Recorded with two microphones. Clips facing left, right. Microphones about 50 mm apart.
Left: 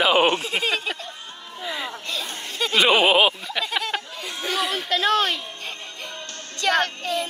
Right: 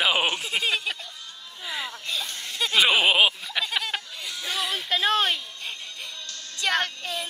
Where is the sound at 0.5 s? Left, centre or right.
Centre.